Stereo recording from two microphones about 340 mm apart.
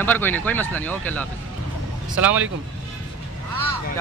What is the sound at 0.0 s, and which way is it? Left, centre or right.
Speech, centre.